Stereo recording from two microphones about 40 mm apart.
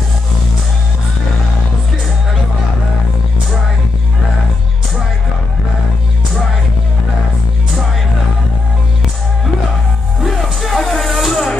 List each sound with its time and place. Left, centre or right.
10.2 s music: centre